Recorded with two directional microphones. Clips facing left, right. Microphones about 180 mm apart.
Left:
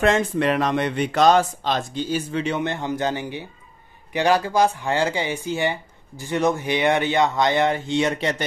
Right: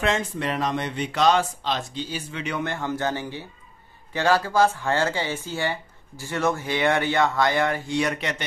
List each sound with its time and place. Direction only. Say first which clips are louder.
0.0 s speech: left 6 dB; 55° left (ahead or behind)
2.4 s speech: left 3 dB; 25° left (ahead or behind)